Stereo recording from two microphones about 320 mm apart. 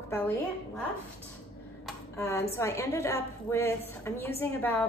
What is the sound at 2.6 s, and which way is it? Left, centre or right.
A woman's voice, centre.